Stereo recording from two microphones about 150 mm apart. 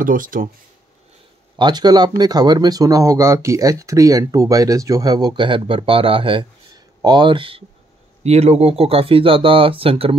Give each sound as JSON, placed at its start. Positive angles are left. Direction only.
{"t": 0.0, "sound": "speech", "side_deg": -65}
{"t": 1.6, "sound": "speech", "side_deg": -30}
{"t": 8.2, "sound": "speech", "side_deg": -45}